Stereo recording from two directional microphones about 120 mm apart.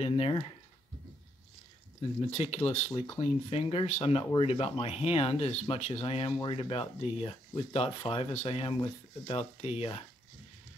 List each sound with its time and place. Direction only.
0.0 s speech: 50° left (ahead or behind)
2.3 s speech: 60° left (ahead or behind)